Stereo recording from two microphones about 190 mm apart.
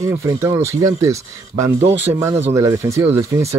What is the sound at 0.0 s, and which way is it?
Speech, 15° right (ahead or behind).